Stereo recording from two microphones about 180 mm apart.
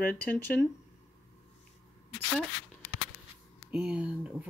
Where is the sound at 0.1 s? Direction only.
10° left (ahead or behind).